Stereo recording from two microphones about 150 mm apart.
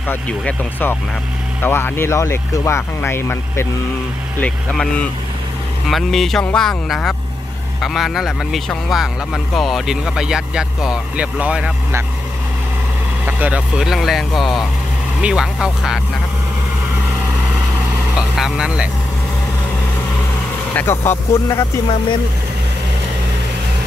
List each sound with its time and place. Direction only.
0.1 s speech: 15° left (ahead or behind); by 11.7 s 5° right (ahead or behind)
13.2 s speech: 10° right (ahead or behind)
18.3 s speech: 5° right (ahead or behind)
20.7 s speech: 15° left (ahead or behind)